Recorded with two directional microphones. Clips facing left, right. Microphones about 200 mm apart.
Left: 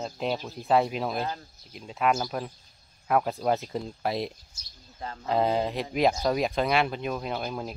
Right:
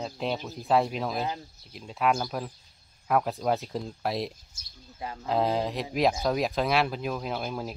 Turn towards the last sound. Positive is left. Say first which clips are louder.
# even
turn(degrees=0)  # may be behind; listen again after turning